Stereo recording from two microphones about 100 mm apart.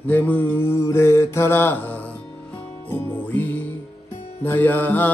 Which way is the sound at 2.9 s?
20° left (ahead or behind).